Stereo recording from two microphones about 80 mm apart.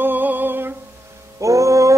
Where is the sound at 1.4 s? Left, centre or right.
Right.